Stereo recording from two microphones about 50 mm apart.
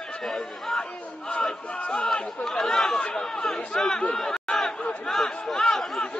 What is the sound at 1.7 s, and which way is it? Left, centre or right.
Speech, left.